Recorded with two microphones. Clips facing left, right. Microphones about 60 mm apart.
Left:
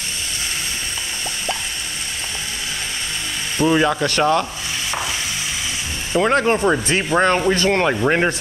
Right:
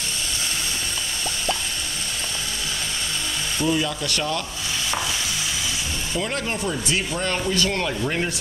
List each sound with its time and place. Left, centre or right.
3.5 s speech: left
6.1 s speech: left